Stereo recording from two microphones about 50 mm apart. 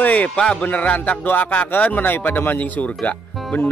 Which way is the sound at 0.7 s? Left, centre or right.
Left.